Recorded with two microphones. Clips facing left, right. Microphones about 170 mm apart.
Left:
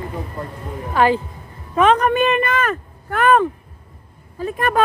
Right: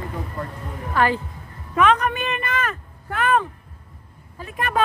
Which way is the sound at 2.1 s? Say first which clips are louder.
Left 9 dB; 55° left (ahead or behind).